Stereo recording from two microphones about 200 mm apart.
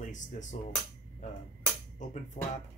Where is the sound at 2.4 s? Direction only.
30° left (ahead or behind).